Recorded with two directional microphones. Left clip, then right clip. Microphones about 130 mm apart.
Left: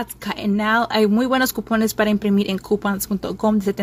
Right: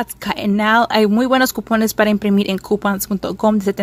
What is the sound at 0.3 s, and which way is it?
Speech, 35° right (ahead or behind).